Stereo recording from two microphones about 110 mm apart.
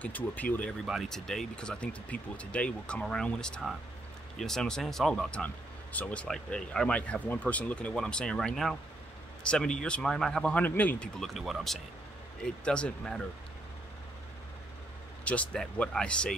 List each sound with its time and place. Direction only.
0.0 s speech: 15° left (ahead or behind)
0.8 s speech: centre (ahead or behind)
11.1 s speech: centre (ahead or behind)
15.2 s speech: 10° left (ahead or behind)